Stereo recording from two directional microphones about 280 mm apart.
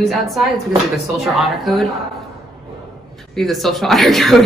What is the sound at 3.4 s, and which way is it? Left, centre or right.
A woman's voice, centre.